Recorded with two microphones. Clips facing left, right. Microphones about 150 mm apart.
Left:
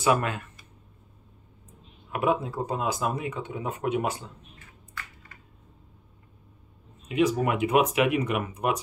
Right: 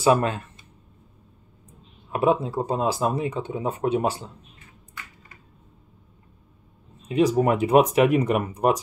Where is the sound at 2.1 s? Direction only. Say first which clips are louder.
Right 4 dB; 30° right (ahead or behind).